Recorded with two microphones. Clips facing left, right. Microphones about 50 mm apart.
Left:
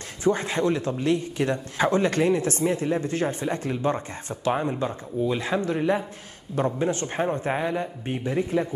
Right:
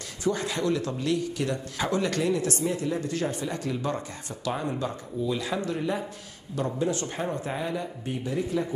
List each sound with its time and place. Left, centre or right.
0.2 s speech: left